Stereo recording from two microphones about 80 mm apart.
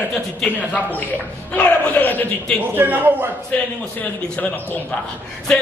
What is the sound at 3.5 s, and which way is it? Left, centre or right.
Speech, centre.